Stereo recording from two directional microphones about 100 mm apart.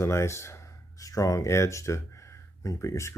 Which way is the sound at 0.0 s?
25° left (ahead or behind).